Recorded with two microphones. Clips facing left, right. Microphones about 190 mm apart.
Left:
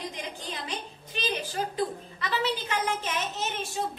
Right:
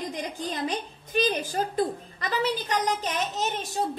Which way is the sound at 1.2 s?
50° right (ahead or behind).